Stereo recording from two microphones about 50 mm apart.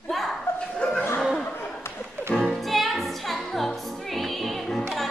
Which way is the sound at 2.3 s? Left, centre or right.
Left.